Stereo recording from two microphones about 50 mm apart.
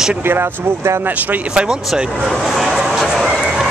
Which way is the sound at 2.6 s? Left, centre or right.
Centre.